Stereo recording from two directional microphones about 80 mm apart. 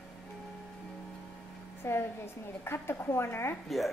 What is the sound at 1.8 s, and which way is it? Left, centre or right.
A woman's voice, left.